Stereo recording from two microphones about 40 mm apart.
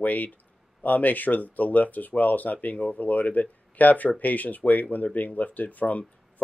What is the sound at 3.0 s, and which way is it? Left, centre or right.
Speech, left.